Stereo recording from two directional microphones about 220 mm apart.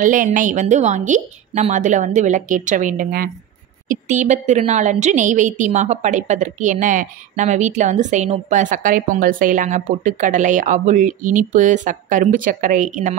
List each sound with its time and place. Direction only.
0.0 s a woman's voice: 35° right (ahead or behind)